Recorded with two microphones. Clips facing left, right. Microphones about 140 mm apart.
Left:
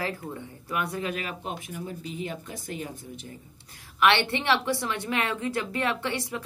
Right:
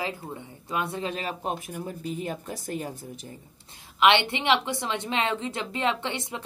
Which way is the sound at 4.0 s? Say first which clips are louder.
Right 2 dB; 20° right (ahead or behind).